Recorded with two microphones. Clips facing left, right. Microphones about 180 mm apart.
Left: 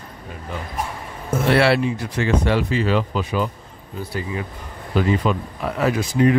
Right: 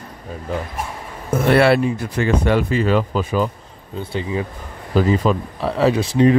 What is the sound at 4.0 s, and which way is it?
Speech, 25° right (ahead or behind).